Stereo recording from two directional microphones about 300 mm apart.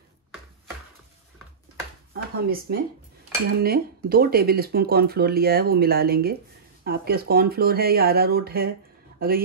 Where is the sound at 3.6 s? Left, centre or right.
Right.